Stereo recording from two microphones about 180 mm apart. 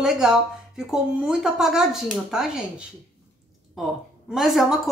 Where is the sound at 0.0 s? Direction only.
Centre (ahead or behind).